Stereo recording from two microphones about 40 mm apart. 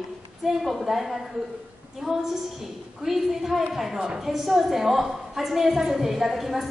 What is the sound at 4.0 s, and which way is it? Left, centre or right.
Speech, centre.